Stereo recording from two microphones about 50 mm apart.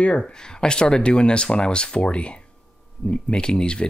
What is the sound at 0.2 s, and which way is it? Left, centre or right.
Speech, centre.